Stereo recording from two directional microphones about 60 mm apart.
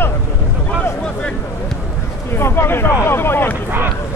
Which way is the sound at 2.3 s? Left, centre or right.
Left.